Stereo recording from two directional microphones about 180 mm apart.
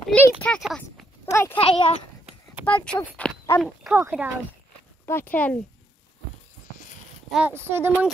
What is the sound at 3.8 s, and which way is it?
Speech, 10° right (ahead or behind).